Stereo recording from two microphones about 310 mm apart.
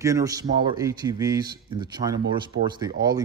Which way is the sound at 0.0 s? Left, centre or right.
Centre.